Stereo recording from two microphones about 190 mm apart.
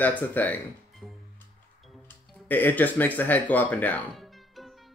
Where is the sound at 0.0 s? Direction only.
10° left (ahead or behind).